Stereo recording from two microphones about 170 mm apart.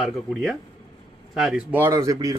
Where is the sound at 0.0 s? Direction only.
Centre (ahead or behind).